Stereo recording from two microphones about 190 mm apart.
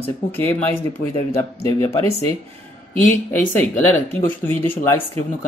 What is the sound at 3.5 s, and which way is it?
Speech, 10° left (ahead or behind).